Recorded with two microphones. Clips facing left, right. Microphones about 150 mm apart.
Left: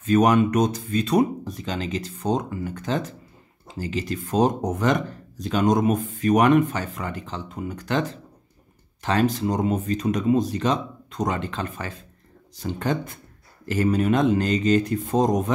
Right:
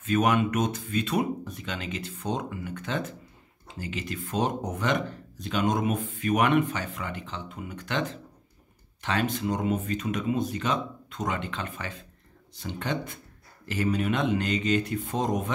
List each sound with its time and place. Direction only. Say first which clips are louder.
0.0 s speech: left 6 dB; 40° left (ahead or behind)
9.0 s speech: left 6 dB; 40° left (ahead or behind)